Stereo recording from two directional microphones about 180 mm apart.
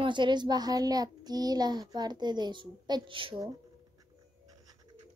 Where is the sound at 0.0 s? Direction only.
25° right (ahead or behind).